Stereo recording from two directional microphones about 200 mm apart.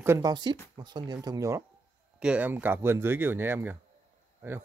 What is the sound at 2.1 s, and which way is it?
Speech, 5° right (ahead or behind).